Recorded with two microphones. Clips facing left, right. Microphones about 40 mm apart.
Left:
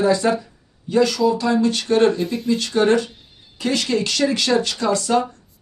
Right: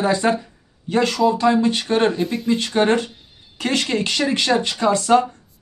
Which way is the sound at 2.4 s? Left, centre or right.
Right.